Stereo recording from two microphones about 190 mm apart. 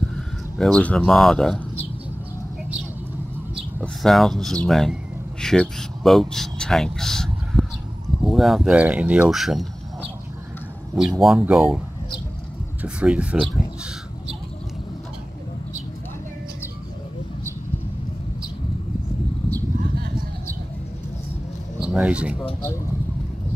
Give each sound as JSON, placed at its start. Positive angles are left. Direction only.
{"t": 0.1, "sound": "speech", "side_deg": 5}
{"t": 3.8, "sound": "speech", "side_deg": 0}
{"t": 11.0, "sound": "speech", "side_deg": 0}
{"t": 12.8, "sound": "speech", "side_deg": -5}
{"t": 19.8, "sound": "a sound", "side_deg": -50}
{"t": 21.7, "sound": "a sound", "side_deg": -5}